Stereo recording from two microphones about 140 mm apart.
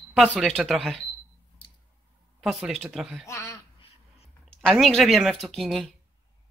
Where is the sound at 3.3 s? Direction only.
25° left (ahead or behind).